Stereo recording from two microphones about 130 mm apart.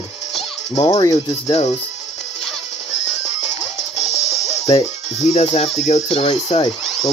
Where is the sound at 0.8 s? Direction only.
30° left (ahead or behind).